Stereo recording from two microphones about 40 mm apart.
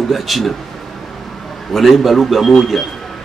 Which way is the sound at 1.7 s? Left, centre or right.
Centre.